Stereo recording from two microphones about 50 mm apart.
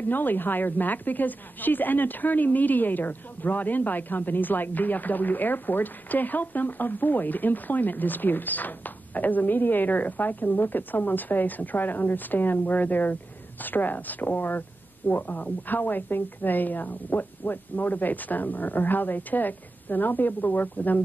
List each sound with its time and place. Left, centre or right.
0.1 s a woman's voice: left